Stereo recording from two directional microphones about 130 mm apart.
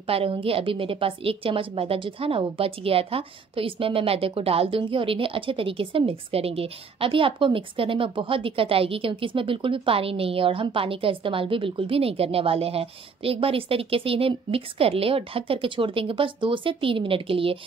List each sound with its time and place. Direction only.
0.0 s a woman's voice: 45° right (ahead or behind)